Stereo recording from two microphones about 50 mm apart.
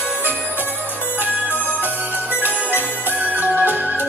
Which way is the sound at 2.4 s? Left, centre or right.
Right.